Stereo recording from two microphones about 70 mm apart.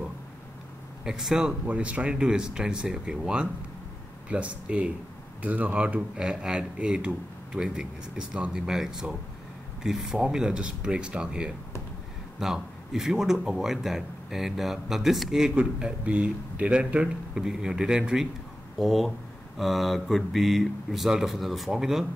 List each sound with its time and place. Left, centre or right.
1.0 s a man's voice: centre
18.8 s a man's voice: centre